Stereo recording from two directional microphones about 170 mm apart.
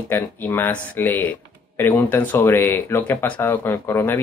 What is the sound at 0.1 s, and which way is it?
Speech, 10° left (ahead or behind).